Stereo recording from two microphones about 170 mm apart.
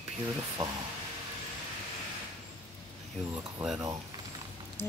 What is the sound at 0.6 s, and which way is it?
Speech, 25° right (ahead or behind).